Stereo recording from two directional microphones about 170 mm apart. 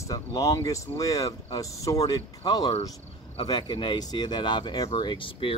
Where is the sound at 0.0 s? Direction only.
20° left (ahead or behind).